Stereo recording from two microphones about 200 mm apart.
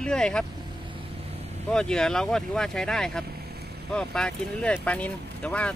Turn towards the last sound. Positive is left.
turn(degrees=5)  # may be behind; listen again after turning